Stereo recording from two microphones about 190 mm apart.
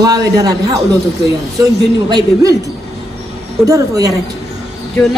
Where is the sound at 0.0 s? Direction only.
20° right (ahead or behind).